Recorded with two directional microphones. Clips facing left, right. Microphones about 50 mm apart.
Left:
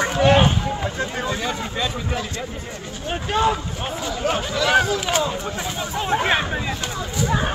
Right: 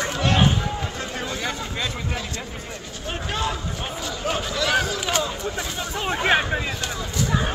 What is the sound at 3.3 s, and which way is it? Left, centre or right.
Run, centre.